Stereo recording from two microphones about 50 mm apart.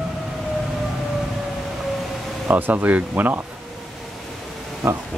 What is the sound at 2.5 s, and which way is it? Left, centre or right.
Speech, right.